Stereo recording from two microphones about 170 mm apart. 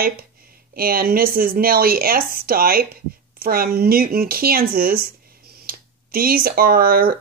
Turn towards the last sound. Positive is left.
turn(degrees=-60)  # may be behind; listen again after turning